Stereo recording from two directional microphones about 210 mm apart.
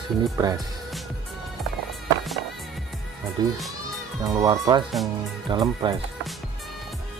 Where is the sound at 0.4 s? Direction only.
15° right (ahead or behind).